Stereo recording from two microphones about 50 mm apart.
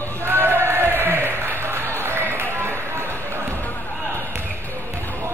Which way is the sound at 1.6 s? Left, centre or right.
Right.